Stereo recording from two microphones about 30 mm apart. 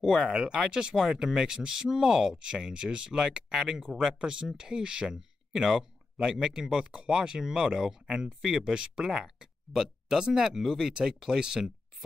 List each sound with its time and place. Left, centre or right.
0.0 s speech: centre
0.3 s speech: right; by 2.3 s centre
2.3 s speech: right
3.9 s speech: centre
4.2 s speech: right
8.4 s speech: centre
10.9 s speech: right